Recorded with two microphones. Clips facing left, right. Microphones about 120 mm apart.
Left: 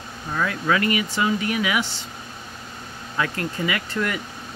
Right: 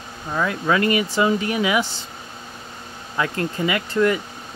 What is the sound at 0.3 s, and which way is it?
Speech, 20° right (ahead or behind).